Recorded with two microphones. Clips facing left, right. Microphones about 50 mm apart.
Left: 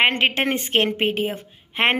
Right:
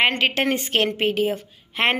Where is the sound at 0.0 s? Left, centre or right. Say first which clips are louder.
Left 1 dB; left.